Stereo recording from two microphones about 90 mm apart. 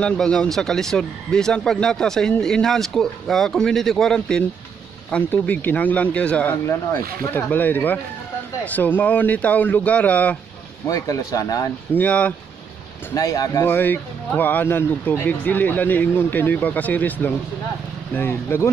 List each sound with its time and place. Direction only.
0.0 s speech: 10° left (ahead or behind)
5.1 s speech: 20° left (ahead or behind)
6.5 s speech: 30° left (ahead or behind)
10.9 s speech: 40° left (ahead or behind)
11.9 s speech: 15° left (ahead or behind)
13.1 s speech: 40° left (ahead or behind)
13.7 s speech: 20° left (ahead or behind)